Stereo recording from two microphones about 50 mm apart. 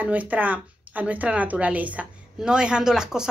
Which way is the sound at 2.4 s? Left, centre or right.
Centre.